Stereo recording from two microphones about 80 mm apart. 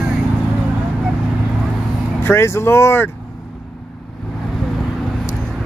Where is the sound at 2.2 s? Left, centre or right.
Left.